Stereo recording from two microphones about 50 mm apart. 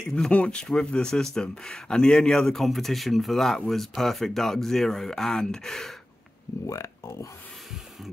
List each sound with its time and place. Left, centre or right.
0.3 s speech: left
6.7 s speech: left